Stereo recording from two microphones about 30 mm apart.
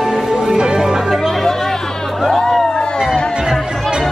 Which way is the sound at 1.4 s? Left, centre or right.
Centre.